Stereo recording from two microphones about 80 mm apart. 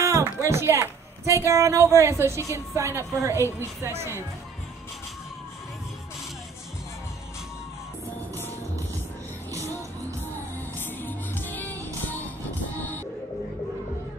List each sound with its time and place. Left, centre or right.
0.4 s a woman's voice: right
10.8 s music: left